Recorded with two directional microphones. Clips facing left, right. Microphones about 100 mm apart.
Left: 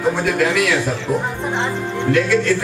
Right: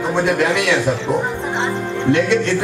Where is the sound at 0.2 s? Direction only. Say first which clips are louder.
Right 1 dB; 25° right (ahead or behind).